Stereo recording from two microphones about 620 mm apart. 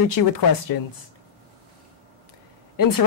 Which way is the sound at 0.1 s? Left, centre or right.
Left.